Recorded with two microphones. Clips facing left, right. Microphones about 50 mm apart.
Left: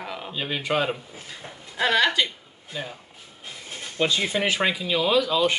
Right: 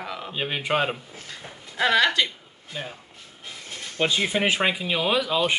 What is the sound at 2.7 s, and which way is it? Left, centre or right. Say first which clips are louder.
Speech: left 1 dB; centre.